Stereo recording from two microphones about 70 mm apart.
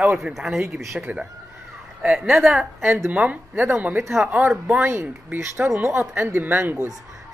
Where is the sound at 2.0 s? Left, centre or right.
Centre.